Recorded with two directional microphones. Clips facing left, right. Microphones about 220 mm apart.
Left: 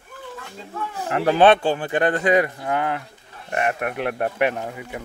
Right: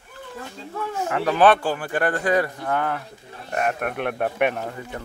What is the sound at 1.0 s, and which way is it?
A man's voice, 35° left (ahead or behind).